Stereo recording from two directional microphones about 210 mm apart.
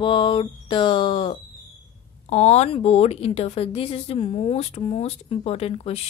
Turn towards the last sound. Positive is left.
turn(degrees=30)  # may be behind; listen again after turning